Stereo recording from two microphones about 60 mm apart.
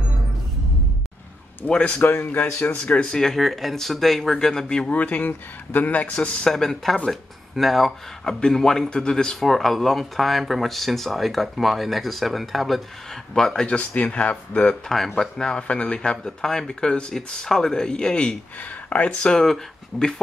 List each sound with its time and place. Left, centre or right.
1.7 s speech: left
2.8 s speech: centre
3.2 s speech: centre
4.9 s speech: left
6.4 s speech: centre
13.3 s speech: centre
13.7 s speech: left
18.6 s speech: left
19.4 s speech: centre